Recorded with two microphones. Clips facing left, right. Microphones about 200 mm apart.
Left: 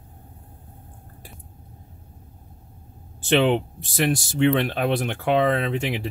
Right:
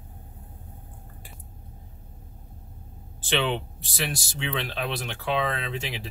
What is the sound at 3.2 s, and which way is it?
Speech, 50° left (ahead or behind).